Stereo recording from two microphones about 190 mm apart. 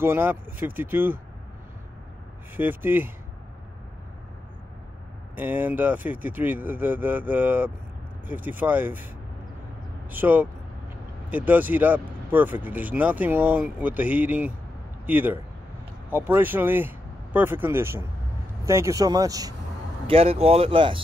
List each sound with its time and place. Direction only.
0.0 s speech: 10° right (ahead or behind)
2.5 s speech: 10° right (ahead or behind)
5.3 s speech: 10° right (ahead or behind)
10.1 s speech: 10° right (ahead or behind)
20.1 s speech: 30° right (ahead or behind)